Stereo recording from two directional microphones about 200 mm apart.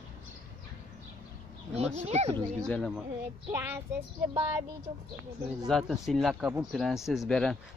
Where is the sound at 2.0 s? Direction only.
35° right (ahead or behind).